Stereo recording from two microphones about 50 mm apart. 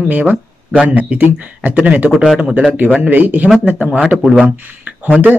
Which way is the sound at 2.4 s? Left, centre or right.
Centre.